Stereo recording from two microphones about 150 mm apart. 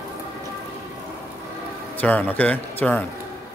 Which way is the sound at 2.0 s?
10° left (ahead or behind).